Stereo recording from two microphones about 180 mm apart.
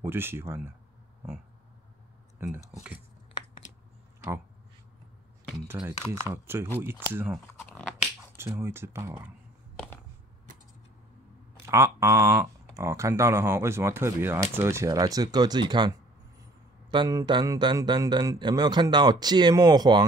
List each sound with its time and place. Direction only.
0.0 s speech: 15° right (ahead or behind)
2.4 s speech: 10° right (ahead or behind)
3.3 s a sound: 25° left (ahead or behind)
5.9 s speech: 15° right (ahead or behind)
7.5 s a sound: 5° left (ahead or behind)
8.4 s speech: 15° right (ahead or behind)
11.6 s speech: 15° right (ahead or behind)